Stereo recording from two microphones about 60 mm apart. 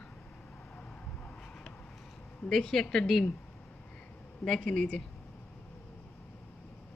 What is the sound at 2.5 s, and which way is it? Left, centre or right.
Speech, centre.